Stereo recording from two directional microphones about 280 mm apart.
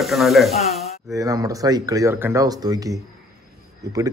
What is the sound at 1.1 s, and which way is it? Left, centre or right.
Speech, centre.